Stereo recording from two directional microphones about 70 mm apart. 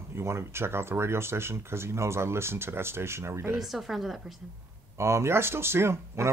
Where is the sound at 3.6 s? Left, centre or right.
Centre.